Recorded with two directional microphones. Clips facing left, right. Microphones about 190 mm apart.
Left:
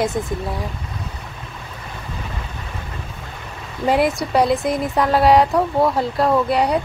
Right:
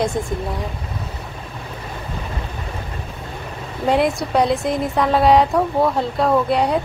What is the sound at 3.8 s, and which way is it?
Speech, centre (ahead or behind).